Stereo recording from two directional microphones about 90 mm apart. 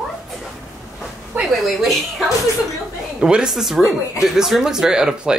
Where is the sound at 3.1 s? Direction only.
10° right (ahead or behind).